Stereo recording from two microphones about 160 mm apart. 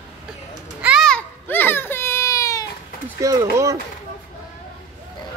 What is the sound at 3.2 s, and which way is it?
Speech, 20° right (ahead or behind).